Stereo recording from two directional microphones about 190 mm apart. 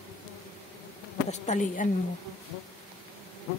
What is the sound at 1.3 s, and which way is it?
Speech, 40° left (ahead or behind).